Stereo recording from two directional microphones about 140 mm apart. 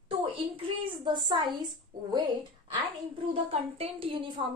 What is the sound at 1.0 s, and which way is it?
Speech, 30° right (ahead or behind).